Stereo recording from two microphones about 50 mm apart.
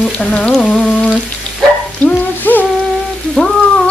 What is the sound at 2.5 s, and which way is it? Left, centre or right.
Rain, left.